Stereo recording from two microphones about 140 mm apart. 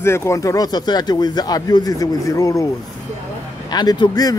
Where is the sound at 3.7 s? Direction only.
30° left (ahead or behind).